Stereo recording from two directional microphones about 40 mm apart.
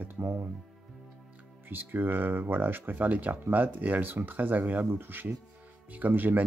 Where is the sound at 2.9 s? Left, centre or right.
Right.